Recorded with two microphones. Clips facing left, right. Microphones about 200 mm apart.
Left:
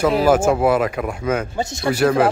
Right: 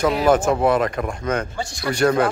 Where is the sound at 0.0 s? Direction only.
5° left (ahead or behind).